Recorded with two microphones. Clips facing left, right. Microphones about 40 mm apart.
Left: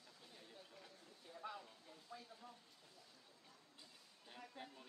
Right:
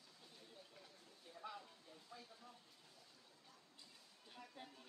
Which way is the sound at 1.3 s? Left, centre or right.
Centre.